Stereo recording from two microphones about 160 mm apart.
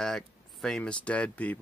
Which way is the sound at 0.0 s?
Centre (ahead or behind).